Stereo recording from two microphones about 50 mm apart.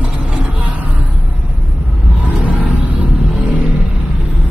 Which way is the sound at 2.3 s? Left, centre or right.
Right.